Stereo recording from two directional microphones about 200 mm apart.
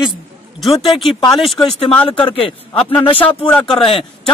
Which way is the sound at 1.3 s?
Centre (ahead or behind).